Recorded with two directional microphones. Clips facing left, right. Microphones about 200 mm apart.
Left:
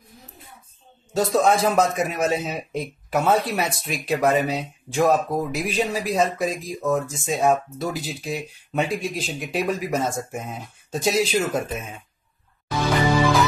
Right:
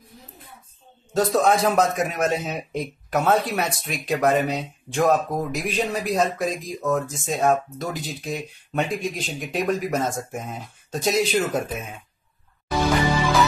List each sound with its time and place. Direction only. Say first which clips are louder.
1.1 s a man's voice: even; centre (ahead or behind)